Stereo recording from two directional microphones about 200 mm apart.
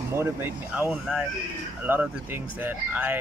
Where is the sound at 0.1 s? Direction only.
10° right (ahead or behind).